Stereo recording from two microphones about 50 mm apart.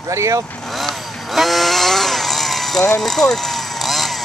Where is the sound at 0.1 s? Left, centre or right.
Right.